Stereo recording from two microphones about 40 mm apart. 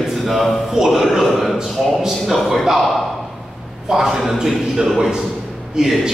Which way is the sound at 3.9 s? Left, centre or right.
Centre.